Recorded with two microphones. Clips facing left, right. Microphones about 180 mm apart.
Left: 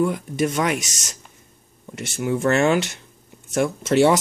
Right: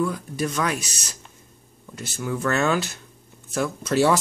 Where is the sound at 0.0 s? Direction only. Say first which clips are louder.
Left 4 dB; 20° left (ahead or behind).